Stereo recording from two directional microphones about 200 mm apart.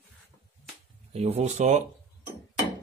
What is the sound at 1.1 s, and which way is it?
Speech, 30° right (ahead or behind).